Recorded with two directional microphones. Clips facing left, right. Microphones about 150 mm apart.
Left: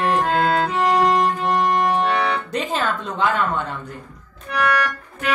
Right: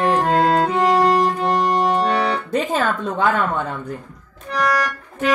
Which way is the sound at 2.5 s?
50° right (ahead or behind).